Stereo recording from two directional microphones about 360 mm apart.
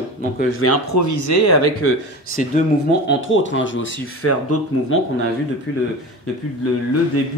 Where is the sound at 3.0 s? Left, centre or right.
Left.